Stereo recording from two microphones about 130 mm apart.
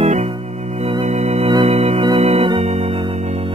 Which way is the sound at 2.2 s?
50° right (ahead or behind).